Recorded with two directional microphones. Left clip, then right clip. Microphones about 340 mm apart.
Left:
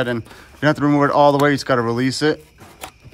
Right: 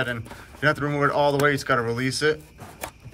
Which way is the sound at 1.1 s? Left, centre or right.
Centre.